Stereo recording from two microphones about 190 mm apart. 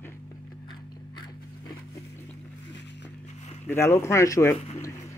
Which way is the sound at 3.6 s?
15° left (ahead or behind).